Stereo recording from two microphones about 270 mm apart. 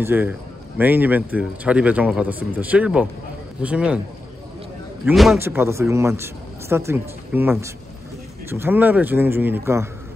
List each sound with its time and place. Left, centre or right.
0.0 s speech: centre
5.0 s speech: centre